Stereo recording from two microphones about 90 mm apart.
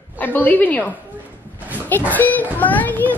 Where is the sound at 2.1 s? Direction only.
20° left (ahead or behind).